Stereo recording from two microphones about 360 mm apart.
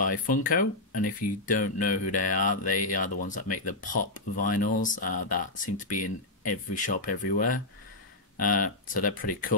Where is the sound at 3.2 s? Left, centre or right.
Left.